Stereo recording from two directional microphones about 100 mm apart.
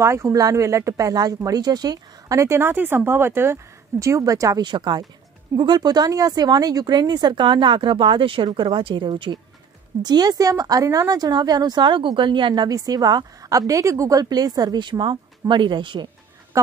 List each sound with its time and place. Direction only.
0.0 s speech: 30° right (ahead or behind)
4.6 s speech: 45° right (ahead or behind)
12.6 s speech: 40° right (ahead or behind)